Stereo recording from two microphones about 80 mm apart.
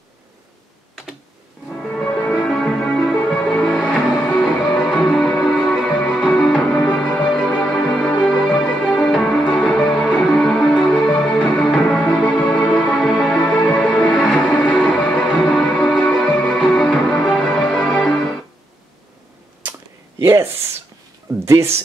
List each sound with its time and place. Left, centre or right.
1.7 s music: centre
17.5 s music: centre
20.2 s a sound: right
21.5 s speech: right